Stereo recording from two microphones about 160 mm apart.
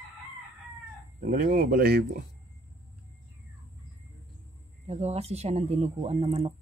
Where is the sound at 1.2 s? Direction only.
60° right (ahead or behind); by 2.0 s 80° right.